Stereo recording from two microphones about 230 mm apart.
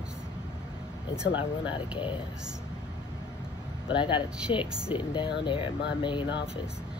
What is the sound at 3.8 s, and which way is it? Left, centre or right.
Speech, left.